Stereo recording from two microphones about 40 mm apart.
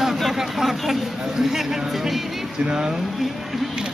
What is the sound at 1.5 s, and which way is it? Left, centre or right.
Speech, centre.